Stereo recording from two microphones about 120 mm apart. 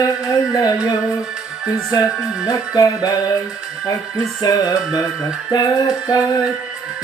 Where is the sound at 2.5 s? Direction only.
30° left (ahead or behind).